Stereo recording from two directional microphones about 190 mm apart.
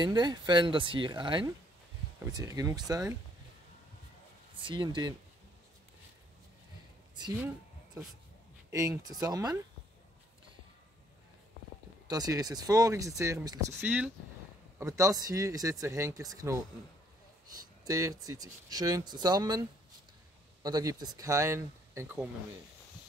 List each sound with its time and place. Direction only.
0.0 s speech: 20° right (ahead or behind)
4.6 s speech: 25° right (ahead or behind)
8.7 s speech: 20° right (ahead or behind)
12.1 s speech: 20° right (ahead or behind)
17.8 s speech: 15° right (ahead or behind)
20.6 s speech: 20° right (ahead or behind)